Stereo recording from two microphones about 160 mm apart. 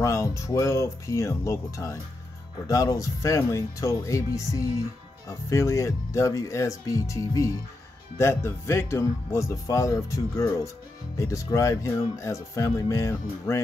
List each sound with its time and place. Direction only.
0.0 s speech: 20° left (ahead or behind)